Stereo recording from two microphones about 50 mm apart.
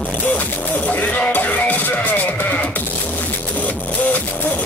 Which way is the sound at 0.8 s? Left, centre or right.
Left.